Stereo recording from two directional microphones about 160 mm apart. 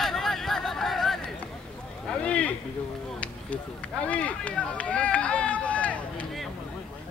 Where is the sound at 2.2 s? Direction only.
10° left (ahead or behind).